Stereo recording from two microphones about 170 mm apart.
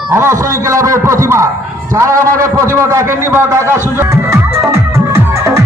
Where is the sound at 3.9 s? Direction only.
15° right (ahead or behind).